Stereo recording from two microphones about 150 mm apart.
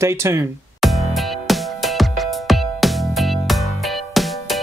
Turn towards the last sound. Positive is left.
turn(degrees=0)  # may be behind; listen again after turning